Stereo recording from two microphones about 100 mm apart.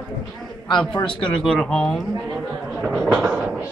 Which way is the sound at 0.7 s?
50° left (ahead or behind).